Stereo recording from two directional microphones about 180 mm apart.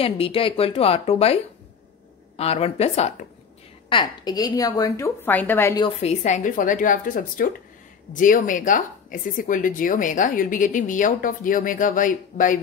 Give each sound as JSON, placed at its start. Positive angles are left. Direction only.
{"t": 0.0, "sound": "speech", "side_deg": 30}
{"t": 3.9, "sound": "a woman's voice", "side_deg": 25}
{"t": 5.8, "sound": "speech", "side_deg": 30}